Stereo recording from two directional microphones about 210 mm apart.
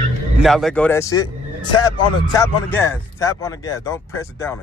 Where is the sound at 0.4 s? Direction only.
Centre (ahead or behind).